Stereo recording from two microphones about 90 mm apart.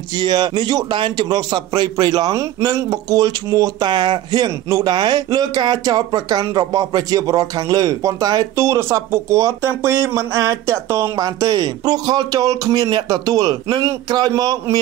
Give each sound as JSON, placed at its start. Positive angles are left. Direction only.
{"t": 0.1, "sound": "a man's voice", "side_deg": -55}
{"t": 3.9, "sound": "speech", "side_deg": -55}
{"t": 4.5, "sound": "speech", "side_deg": -40}
{"t": 4.9, "sound": "a man's voice", "side_deg": -55}
{"t": 8.6, "sound": "speech", "side_deg": -30}
{"t": 11.1, "sound": "a man's voice", "side_deg": -45}